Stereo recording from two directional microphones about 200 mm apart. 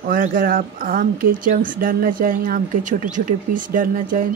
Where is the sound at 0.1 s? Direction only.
45° right (ahead or behind).